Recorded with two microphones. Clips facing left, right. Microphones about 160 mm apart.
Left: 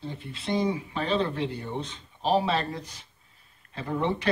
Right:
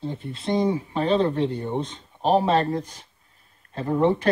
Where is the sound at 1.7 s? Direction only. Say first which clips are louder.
Right 6 dB; 50° right (ahead or behind).